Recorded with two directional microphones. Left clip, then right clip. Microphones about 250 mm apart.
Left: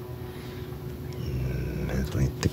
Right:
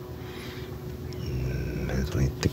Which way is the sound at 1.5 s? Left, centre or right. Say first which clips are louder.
Right 1 dB; centre.